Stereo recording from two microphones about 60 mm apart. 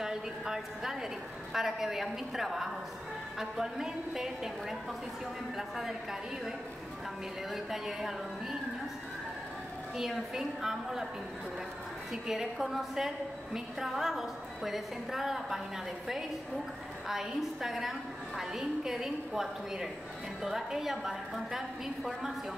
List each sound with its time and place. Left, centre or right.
0.0 s a sound: centre
1.5 s a woman's voice: centre
7.5 s a woman's voice: centre
9.9 s a woman's voice: centre
12.1 s a woman's voice: centre
17.1 s a woman's voice: centre